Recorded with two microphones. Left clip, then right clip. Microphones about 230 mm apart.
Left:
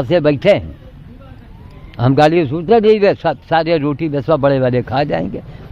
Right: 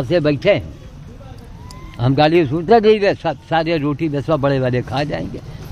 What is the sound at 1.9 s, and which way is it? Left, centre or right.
Speech, left.